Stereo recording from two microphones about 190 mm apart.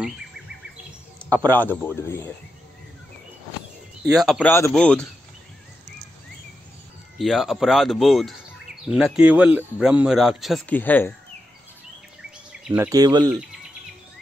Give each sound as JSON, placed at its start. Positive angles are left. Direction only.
{"t": 1.2, "sound": "speech", "side_deg": 10}
{"t": 4.2, "sound": "speech", "side_deg": 0}
{"t": 4.5, "sound": "speech", "side_deg": 15}
{"t": 7.2, "sound": "speech", "side_deg": 0}
{"t": 12.6, "sound": "speech", "side_deg": -10}